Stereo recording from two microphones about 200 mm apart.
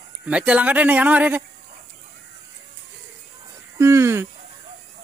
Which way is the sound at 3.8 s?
15° right (ahead or behind).